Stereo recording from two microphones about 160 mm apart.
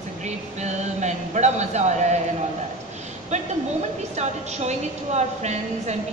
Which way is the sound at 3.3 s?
45° right (ahead or behind).